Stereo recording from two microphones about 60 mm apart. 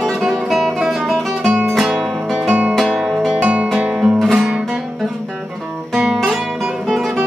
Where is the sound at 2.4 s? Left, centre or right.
Right.